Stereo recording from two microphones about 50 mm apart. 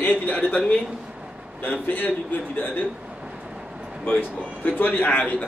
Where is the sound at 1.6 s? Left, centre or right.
Left.